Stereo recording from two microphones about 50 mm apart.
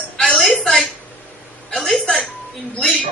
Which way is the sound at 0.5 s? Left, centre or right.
Centre.